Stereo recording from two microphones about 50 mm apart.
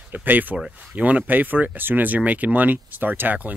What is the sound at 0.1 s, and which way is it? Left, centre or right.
Speech, right.